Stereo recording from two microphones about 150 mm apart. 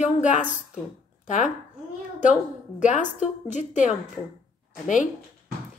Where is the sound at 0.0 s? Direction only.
55° left (ahead or behind).